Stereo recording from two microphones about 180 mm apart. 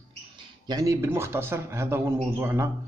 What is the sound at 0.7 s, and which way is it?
A man's voice, 20° right (ahead or behind).